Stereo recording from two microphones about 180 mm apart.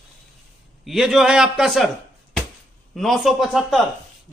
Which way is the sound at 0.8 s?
Centre (ahead or behind).